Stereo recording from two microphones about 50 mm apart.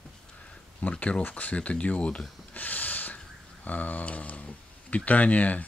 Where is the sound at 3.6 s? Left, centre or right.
Left.